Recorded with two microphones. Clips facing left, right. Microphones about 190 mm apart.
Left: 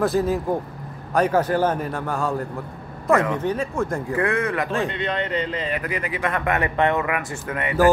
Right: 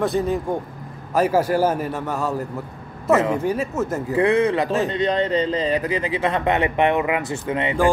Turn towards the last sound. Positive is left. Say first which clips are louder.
# right 4 dB
turn(degrees=-25)  # may be behind; listen again after turning